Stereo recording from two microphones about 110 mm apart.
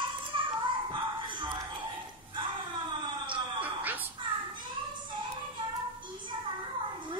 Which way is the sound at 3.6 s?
15° right (ahead or behind).